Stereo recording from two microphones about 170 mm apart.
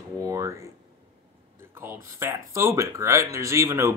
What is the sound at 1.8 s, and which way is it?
Speech, 15° right (ahead or behind).